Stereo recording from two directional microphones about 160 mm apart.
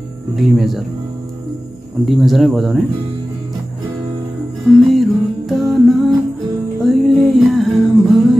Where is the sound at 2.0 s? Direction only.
Centre (ahead or behind).